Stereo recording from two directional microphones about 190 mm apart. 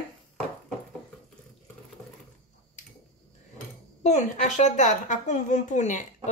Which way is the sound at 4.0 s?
35° left (ahead or behind).